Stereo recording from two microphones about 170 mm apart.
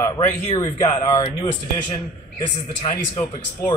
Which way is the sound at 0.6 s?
20° left (ahead or behind).